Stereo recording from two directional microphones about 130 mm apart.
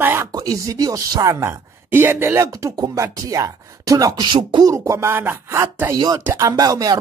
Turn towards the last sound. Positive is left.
turn(degrees=-30)  # may be behind; listen again after turning